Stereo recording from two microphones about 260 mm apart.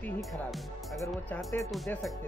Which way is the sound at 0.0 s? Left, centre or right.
Centre.